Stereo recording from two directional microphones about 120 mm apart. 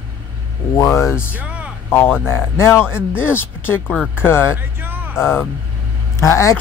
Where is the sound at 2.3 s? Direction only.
20° left (ahead or behind).